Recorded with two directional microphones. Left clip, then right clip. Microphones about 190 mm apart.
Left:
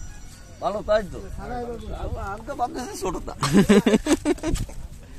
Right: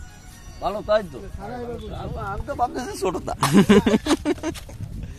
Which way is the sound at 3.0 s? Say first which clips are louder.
Right 5 dB; 40° right (ahead or behind).